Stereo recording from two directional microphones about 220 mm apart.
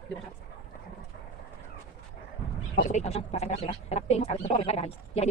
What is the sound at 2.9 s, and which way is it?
Speech, 30° left (ahead or behind).